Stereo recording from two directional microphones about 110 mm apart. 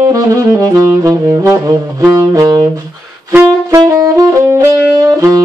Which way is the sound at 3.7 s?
35° right (ahead or behind).